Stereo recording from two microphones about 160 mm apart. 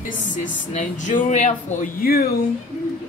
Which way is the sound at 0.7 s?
50° left (ahead or behind).